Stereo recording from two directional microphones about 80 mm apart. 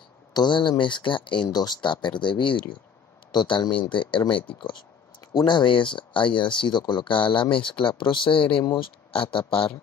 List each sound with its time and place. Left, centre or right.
0.3 s speech: left
1.5 s speech: left
1.8 s speech: left
3.3 s speech: left
3.9 s speech: left
5.3 s speech: left